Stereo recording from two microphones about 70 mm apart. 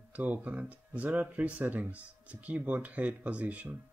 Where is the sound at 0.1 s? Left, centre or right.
Right.